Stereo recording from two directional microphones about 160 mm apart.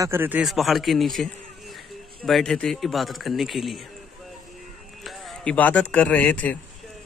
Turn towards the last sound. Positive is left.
turn(degrees=10)  # may be behind; listen again after turning